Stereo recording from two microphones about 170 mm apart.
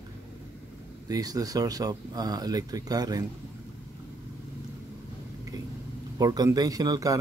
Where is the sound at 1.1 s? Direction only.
20° right (ahead or behind).